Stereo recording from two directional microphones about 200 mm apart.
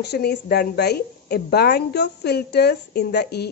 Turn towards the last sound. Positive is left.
turn(degrees=55)  # may be behind; listen again after turning